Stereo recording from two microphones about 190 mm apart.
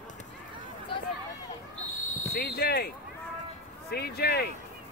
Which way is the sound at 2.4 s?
55° left (ahead or behind).